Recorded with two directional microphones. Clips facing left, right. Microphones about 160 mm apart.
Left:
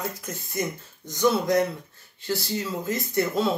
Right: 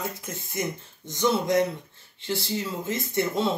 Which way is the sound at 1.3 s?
20° right (ahead or behind).